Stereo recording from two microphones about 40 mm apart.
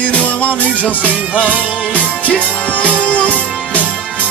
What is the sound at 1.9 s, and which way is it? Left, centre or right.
Music, left.